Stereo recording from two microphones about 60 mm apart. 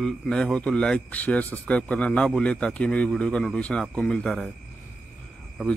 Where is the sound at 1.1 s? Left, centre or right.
Left.